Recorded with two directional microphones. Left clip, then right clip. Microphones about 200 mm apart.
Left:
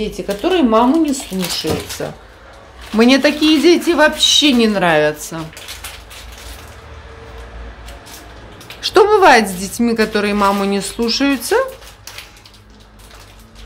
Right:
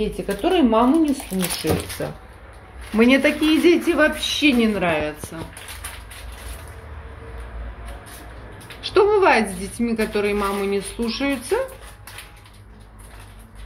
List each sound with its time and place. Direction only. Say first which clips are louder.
0.0 s speech: left 3 dB; 10° left (ahead or behind); by 5.1 s 30° left (ahead or behind)
8.8 s a woman's voice: left 6 dB; 35° left (ahead or behind)